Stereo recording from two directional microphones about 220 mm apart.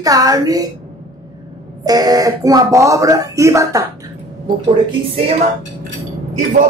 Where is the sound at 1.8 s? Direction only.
15° right (ahead or behind).